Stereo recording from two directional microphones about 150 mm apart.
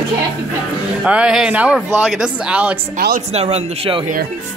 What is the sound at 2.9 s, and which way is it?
Speech, 90° right.